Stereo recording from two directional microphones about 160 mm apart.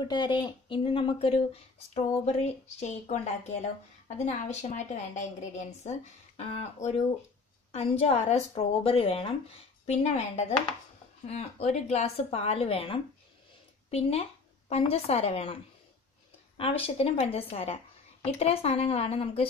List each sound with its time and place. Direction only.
0.1 s speech: 30° left (ahead or behind); by 3.2 s 45° left (ahead or behind)
4.3 s a woman's voice: 45° left (ahead or behind)
16.5 s speech: 35° left (ahead or behind)